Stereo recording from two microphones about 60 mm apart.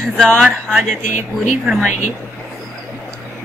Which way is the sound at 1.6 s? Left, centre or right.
Centre.